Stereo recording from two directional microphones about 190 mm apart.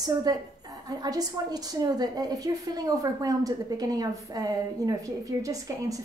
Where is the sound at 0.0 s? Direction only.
20° right (ahead or behind).